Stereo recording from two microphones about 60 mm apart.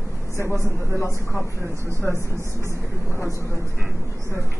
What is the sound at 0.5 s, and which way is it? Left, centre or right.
Speech, left.